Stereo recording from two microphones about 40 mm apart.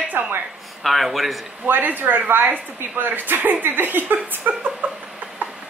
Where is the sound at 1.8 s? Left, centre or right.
Right.